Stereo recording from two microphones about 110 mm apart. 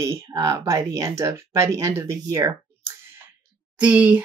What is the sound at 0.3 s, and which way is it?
Speech, 30° right (ahead or behind).